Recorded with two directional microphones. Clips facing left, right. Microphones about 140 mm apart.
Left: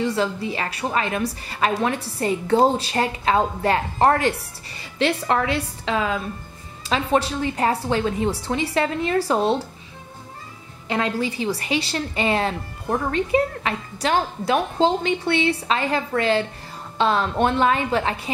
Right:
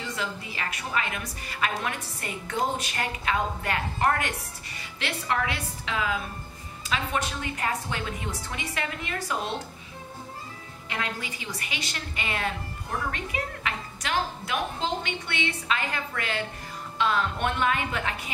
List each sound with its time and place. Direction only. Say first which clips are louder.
0.0 s a woman's voice: left 11 dB; 30° left (ahead or behind)
10.9 s a woman's voice: left 10 dB; 30° left (ahead or behind)